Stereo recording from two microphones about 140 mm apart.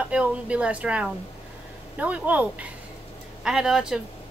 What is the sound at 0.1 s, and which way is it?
Speech, 10° right (ahead or behind).